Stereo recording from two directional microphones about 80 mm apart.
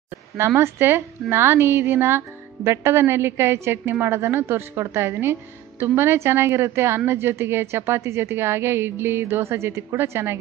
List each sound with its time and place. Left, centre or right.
0.6 s a woman's voice: right